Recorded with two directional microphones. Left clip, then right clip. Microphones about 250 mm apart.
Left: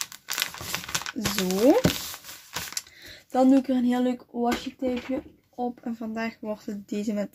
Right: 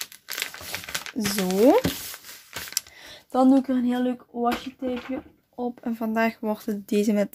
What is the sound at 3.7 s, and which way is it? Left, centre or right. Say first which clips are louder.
Speech: even; centre.